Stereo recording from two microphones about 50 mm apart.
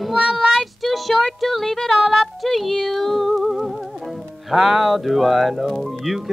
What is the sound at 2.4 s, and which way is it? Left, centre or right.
Speech, centre.